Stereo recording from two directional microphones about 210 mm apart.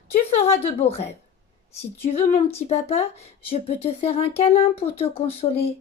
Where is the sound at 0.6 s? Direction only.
30° left (ahead or behind).